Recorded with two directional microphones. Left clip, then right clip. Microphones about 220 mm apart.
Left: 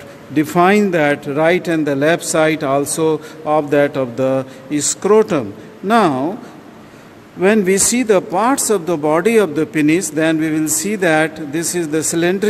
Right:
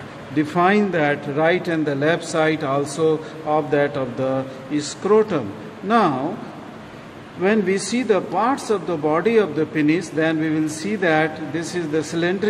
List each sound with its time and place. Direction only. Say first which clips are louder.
0.4 s speech: left 5 dB; 50° left (ahead or behind)
7.4 s speech: left 6 dB; 50° left (ahead or behind)